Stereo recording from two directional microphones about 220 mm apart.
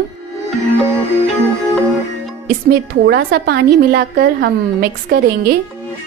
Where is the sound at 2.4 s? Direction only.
45° right (ahead or behind).